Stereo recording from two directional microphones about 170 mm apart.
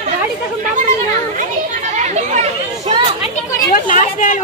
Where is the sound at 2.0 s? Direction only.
40° right (ahead or behind).